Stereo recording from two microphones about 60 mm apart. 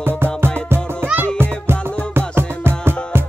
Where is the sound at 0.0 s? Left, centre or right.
Right.